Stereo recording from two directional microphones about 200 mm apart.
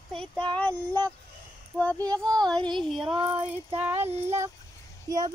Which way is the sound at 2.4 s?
5° left (ahead or behind).